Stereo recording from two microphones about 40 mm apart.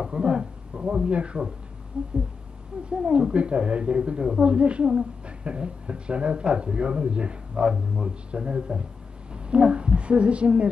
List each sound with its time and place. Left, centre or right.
0.0 s a woman's voice: right